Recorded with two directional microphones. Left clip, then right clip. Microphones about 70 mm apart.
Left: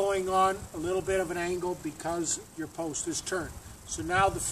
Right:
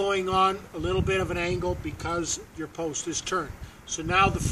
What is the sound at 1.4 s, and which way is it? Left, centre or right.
Speech, right.